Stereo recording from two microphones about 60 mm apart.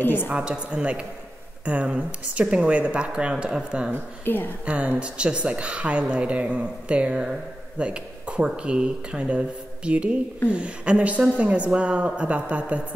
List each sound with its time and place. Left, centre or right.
0.0 s a woman's voice: left
0.3 s speech: centre
4.2 s a woman's voice: left
4.6 s speech: right
7.8 s a sound: centre
8.5 s speech: centre